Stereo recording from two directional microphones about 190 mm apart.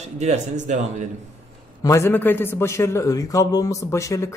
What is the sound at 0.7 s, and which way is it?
Speech, 40° right (ahead or behind).